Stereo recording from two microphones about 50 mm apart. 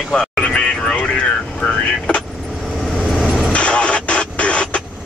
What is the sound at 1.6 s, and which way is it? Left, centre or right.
Vehicle, left.